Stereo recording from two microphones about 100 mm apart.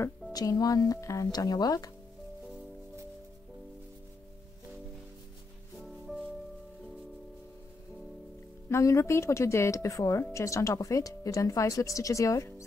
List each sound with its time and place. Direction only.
0.3 s speech: 40° left (ahead or behind)
5.8 s music: centre (ahead or behind)
8.6 s speech: 30° left (ahead or behind)